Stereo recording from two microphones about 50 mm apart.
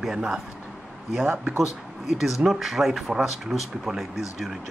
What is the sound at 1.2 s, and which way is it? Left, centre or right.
Speech, right.